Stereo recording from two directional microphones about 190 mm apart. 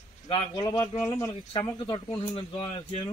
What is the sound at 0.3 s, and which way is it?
A man's voice, 20° left (ahead or behind).